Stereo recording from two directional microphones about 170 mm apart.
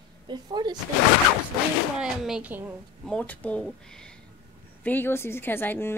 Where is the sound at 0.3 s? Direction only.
25° right (ahead or behind).